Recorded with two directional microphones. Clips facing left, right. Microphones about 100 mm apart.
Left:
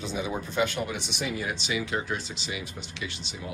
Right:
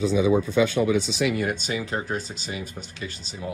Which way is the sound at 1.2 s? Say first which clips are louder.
Right 8 dB; 80° right.